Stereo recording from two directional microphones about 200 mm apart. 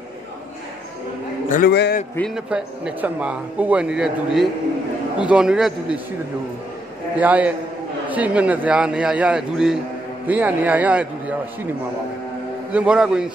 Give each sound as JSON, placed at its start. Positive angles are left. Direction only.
{"t": 1.5, "sound": "a man's voice", "side_deg": 50}
{"t": 2.1, "sound": "speech", "side_deg": 0}
{"t": 7.2, "sound": "a man's voice", "side_deg": -5}
{"t": 12.7, "sound": "speech", "side_deg": -5}